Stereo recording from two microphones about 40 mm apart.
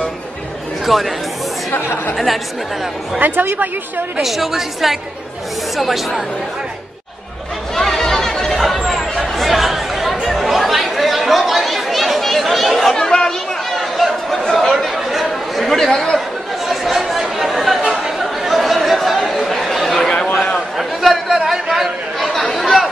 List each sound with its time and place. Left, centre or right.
1.7 s speech: left
3.2 s a woman's voice: right
4.2 s a woman's voice: centre
7.7 s chatter: centre
12.9 s chatter: centre
13.7 s chatter: centre
16.6 s chatter: centre
20.0 s a sound: centre
20.5 s chatter: centre
22.2 s chatter: centre